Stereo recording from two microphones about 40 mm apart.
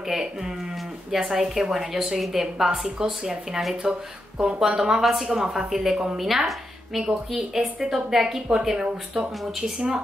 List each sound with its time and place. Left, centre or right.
0.1 s a woman's voice: centre
3.8 s a woman's voice: right